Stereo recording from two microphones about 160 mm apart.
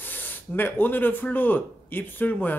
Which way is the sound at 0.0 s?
10° left (ahead or behind).